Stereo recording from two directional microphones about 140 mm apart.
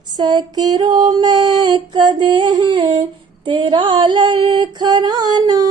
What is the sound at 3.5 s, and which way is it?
Female singing, 35° right (ahead or behind).